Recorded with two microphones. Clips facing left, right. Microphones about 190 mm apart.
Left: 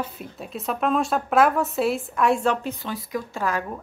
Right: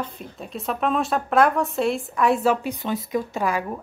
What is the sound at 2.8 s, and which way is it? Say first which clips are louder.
Speech: right 5 dB; 20° right (ahead or behind).